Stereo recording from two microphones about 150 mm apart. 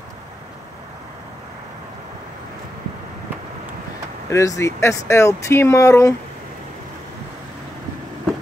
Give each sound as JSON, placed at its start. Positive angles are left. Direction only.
{"t": 4.3, "sound": "speech", "side_deg": 20}